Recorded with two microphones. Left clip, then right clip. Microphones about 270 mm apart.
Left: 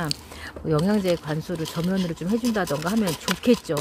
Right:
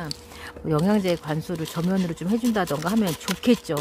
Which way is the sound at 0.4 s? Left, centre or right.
Centre.